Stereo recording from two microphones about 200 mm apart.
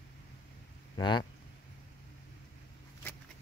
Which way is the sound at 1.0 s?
20° left (ahead or behind).